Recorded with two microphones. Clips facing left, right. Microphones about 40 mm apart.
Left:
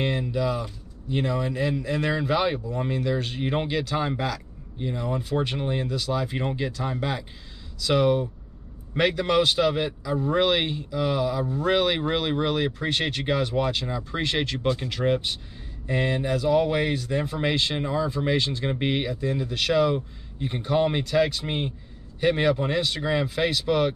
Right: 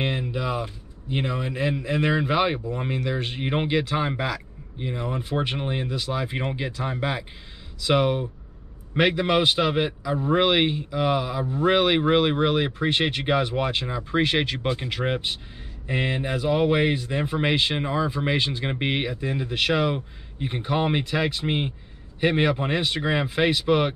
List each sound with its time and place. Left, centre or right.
0.0 s speech: right